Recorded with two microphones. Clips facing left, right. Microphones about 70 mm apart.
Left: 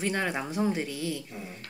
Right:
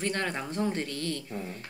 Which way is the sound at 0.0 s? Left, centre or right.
Centre.